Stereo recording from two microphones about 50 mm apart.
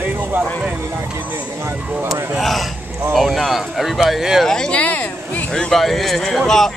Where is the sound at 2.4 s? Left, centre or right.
Centre.